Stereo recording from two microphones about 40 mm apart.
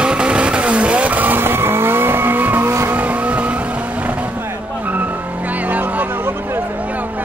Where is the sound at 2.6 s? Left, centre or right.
Right.